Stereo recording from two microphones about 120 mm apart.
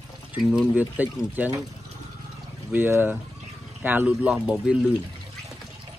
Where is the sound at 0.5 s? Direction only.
10° right (ahead or behind).